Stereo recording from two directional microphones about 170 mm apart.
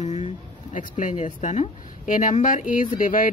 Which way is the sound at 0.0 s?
40° left (ahead or behind).